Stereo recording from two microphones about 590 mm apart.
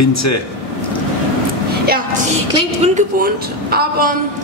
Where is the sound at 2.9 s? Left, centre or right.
Centre.